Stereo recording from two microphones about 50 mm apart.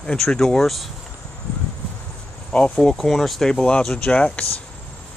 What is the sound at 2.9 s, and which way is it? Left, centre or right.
Speech, centre.